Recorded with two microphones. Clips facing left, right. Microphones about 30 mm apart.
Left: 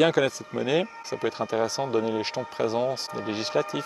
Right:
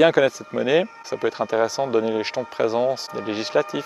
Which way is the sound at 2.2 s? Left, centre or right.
Centre.